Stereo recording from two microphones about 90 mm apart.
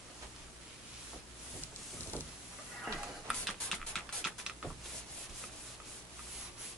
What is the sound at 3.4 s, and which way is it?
Music, 5° left (ahead or behind).